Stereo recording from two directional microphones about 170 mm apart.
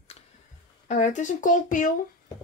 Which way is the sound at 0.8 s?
45° left (ahead or behind).